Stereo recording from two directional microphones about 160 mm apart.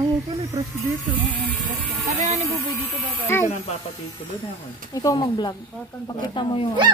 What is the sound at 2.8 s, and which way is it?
Speech, 15° left (ahead or behind).